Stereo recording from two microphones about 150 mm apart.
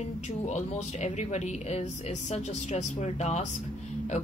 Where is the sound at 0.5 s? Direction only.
50° left (ahead or behind).